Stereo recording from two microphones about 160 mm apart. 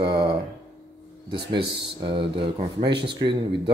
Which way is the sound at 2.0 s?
30° right (ahead or behind).